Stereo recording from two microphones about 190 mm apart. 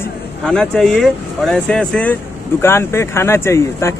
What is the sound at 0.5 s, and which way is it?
Speech, 5° left (ahead or behind).